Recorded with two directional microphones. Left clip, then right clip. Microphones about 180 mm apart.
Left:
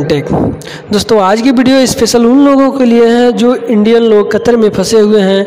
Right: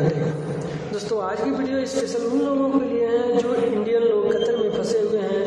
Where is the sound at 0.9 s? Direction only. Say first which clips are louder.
Left 18 dB; 50° left (ahead or behind).